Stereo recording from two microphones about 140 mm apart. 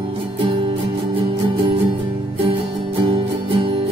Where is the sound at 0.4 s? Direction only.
40° right (ahead or behind).